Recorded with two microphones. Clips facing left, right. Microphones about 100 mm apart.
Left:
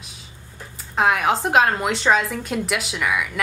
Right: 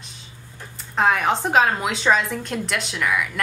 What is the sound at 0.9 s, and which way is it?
A woman's voice, centre (ahead or behind).